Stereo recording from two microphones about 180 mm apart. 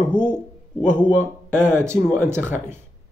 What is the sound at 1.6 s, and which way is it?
Speech, 10° right (ahead or behind).